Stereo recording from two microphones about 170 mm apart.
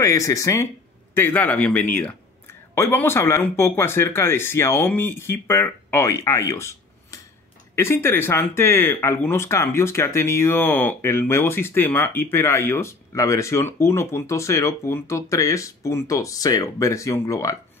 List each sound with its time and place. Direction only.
0.0 s speech: 20° left (ahead or behind)